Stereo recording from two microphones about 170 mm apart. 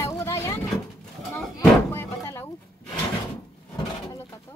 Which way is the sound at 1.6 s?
15° left (ahead or behind).